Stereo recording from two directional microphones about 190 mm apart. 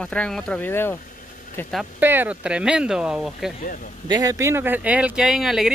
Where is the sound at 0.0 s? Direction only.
5° left (ahead or behind).